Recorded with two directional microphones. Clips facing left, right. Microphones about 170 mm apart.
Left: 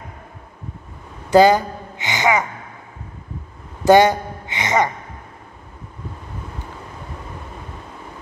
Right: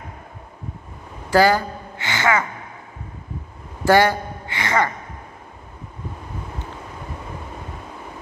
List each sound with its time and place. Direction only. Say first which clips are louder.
1.3 s a woman's voice: left 4 dB; 20° left (ahead or behind)
3.8 s speech: left 4 dB; 20° left (ahead or behind)